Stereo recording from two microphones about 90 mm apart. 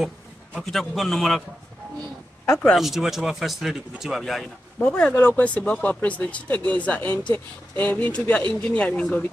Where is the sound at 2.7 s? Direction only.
5° right (ahead or behind).